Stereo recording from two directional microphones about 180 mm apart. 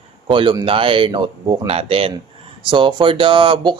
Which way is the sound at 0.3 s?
25° right (ahead or behind).